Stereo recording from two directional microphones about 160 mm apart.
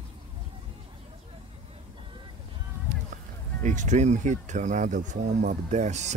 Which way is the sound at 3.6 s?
50° right (ahead or behind).